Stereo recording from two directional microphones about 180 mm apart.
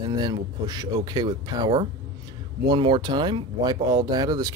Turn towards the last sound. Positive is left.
turn(degrees=-20)  # may be behind; listen again after turning